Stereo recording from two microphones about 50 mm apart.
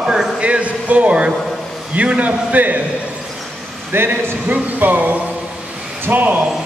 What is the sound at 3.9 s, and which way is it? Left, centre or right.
Speech, right.